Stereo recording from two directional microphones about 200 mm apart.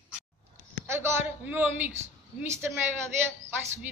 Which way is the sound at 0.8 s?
10° right (ahead or behind).